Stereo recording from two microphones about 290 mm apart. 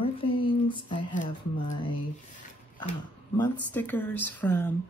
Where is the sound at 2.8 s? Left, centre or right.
Centre.